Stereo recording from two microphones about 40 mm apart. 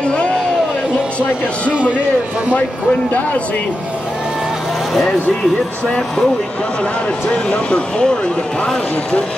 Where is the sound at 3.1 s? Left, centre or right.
Left.